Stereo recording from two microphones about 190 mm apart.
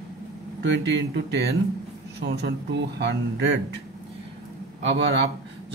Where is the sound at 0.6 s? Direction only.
65° right (ahead or behind).